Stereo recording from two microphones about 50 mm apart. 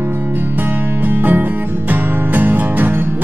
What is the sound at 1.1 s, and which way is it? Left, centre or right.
Music, right.